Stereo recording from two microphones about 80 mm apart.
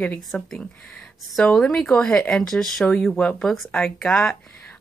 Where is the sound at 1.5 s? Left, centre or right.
Centre.